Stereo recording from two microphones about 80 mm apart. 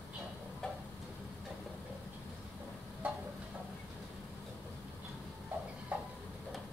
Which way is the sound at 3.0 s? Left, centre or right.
Centre.